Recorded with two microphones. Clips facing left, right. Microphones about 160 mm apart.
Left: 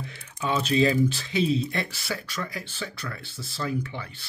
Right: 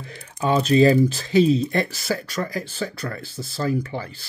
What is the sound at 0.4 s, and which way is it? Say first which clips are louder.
Speech: right 6 dB; 40° right (ahead or behind).